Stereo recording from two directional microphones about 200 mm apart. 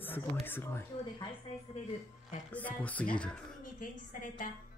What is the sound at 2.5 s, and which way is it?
Speech, 10° left (ahead or behind).